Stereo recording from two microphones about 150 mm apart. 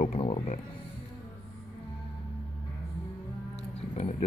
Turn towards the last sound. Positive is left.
turn(degrees=50)  # may be behind; listen again after turning